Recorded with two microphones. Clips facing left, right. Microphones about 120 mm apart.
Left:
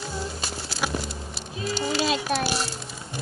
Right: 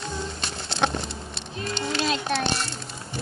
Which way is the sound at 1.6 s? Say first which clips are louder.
Left 2 dB; 5° left (ahead or behind).